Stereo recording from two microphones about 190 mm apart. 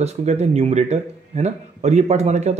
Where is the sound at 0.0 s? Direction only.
35° right (ahead or behind).